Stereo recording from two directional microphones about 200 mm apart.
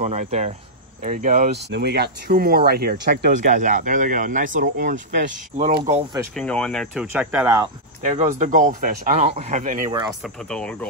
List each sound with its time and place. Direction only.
0.0 s speech: 35° right (ahead or behind)
1.7 s speech: 55° right (ahead or behind)
3.4 s speech: 40° right (ahead or behind)
6.3 s speech: 5° left (ahead or behind)
7.1 s speech: 10° right (ahead or behind)
8.0 s speech: 40° right (ahead or behind)
10.2 s speech: 5° left (ahead or behind)